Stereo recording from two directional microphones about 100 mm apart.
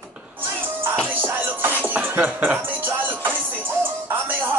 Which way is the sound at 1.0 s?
20° right (ahead or behind).